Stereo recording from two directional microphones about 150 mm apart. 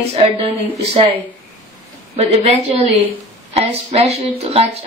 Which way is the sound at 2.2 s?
45° right (ahead or behind).